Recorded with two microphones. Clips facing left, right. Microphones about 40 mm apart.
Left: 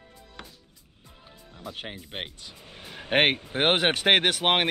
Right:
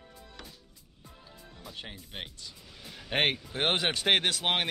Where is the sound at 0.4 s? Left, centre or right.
Left.